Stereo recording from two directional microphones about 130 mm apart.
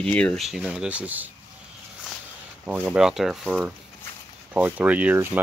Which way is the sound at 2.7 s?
10° right (ahead or behind).